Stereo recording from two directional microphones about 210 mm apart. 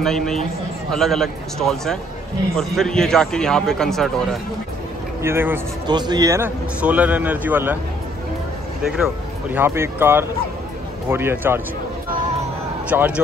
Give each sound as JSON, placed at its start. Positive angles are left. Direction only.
{"t": 0.0, "sound": "a man's voice", "side_deg": 0}
{"t": 5.2, "sound": "a man's voice", "side_deg": -10}
{"t": 8.8, "sound": "a man's voice", "side_deg": -5}
{"t": 12.9, "sound": "a man's voice", "side_deg": -10}